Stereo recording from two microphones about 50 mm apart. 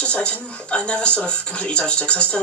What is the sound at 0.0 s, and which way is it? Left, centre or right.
Speech, left.